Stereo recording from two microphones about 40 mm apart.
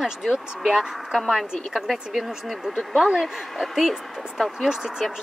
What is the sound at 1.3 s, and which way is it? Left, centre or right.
Speech, centre.